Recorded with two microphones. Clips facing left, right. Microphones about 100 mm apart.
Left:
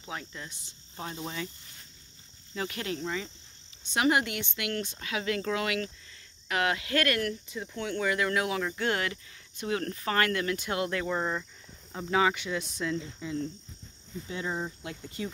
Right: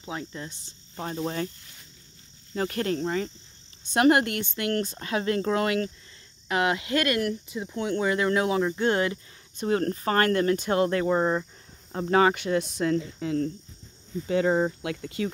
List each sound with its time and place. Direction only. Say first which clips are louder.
0.0 s speech: right 5 dB; 25° right (ahead or behind); by 1.5 s 45° right (ahead or behind)
2.5 s speech: right 7 dB; 45° right (ahead or behind)
6.5 s speech: right 4 dB; 25° right (ahead or behind)
11.9 s speech: right 5 dB; 45° right (ahead or behind); by 15.3 s 80° right